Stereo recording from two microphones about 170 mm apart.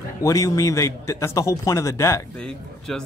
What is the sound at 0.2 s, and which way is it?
Speech, 20° left (ahead or behind).